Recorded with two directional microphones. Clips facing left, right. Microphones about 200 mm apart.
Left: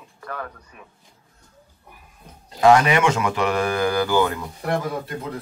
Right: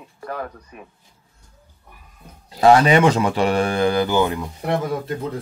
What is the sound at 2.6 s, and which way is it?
Speech, 30° right (ahead or behind).